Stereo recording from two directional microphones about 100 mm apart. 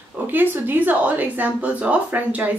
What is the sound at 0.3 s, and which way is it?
Speech, 20° right (ahead or behind).